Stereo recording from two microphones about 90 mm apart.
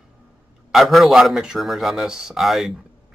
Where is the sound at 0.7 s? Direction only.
Centre (ahead or behind).